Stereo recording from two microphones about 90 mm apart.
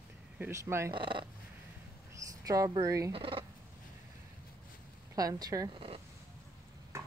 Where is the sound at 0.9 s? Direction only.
70° right (ahead or behind).